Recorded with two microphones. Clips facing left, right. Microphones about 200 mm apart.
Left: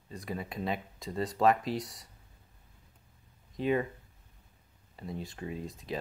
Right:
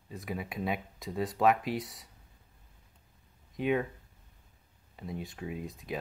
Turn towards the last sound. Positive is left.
turn(degrees=0)  # may be behind; listen again after turning